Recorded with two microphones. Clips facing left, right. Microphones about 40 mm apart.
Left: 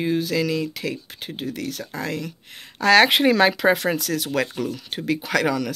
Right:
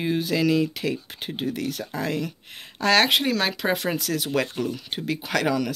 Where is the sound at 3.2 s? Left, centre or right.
Left.